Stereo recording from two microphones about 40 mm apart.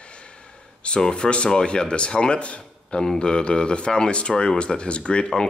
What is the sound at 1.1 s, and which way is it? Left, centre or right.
Speech, left.